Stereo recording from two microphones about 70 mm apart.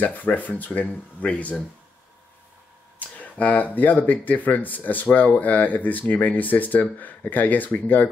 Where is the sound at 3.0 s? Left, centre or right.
Left.